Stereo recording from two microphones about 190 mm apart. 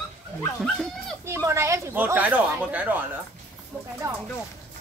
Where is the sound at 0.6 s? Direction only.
Centre (ahead or behind).